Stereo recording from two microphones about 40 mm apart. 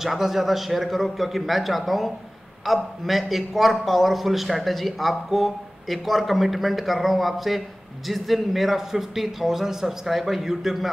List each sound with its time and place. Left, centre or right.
0.0 s a man's voice: centre